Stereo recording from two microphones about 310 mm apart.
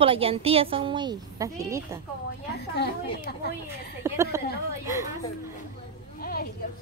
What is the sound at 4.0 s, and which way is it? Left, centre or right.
Speech, centre.